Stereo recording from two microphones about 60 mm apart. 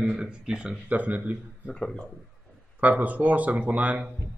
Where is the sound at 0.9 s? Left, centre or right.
Right.